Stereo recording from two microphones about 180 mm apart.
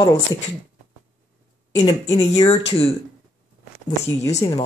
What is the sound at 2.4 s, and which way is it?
Speech, 35° left (ahead or behind).